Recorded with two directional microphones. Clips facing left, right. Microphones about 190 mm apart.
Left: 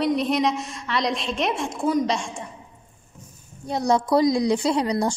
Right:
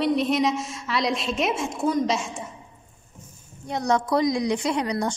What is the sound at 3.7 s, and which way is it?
A woman's voice, 35° left (ahead or behind).